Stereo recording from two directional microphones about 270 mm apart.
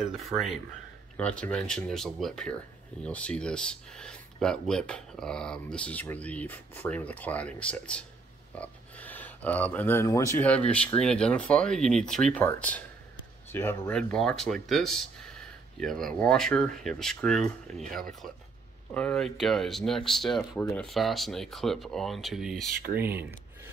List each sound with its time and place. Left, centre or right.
0.1 s speech: centre